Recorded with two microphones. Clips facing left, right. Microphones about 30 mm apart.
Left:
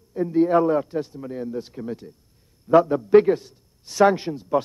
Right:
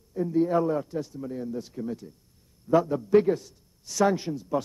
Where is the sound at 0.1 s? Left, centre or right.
Left.